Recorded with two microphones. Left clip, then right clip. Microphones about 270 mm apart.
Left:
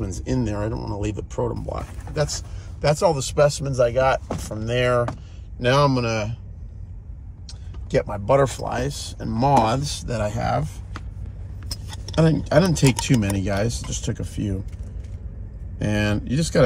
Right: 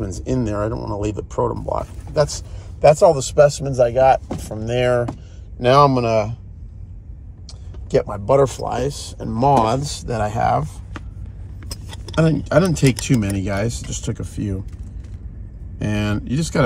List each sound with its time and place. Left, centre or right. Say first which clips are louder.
0.2 s speech: right 5 dB; centre
7.9 s speech: right 3 dB; centre
9.3 s speech: right 3 dB; centre
12.2 s speech: right 2 dB; centre
15.8 s speech: even; centre